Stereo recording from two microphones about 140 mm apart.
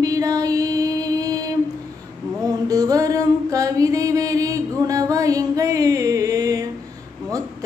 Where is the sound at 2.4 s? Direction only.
25° right (ahead or behind).